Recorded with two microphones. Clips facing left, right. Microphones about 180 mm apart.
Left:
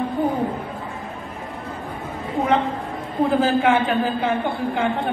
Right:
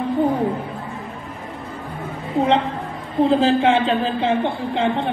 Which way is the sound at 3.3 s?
25° right (ahead or behind).